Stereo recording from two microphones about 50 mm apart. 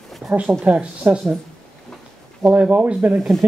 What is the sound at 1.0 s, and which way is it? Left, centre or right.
Speech, right.